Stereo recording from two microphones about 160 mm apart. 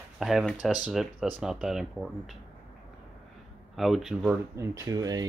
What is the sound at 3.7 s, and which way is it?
Speech, centre (ahead or behind).